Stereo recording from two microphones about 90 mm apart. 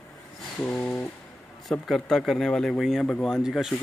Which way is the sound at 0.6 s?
15° left (ahead or behind).